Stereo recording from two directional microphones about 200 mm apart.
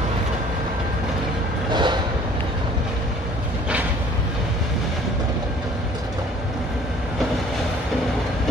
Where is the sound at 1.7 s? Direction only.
20° right (ahead or behind).